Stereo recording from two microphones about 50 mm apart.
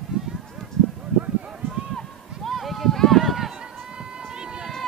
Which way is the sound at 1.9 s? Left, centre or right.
Centre.